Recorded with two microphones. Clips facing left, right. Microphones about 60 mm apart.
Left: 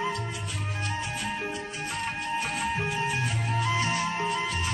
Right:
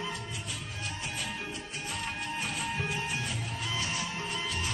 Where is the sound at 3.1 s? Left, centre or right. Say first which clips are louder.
Left 6 dB; left.